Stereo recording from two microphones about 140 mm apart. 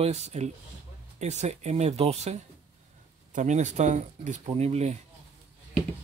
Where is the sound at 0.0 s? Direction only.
50° right (ahead or behind).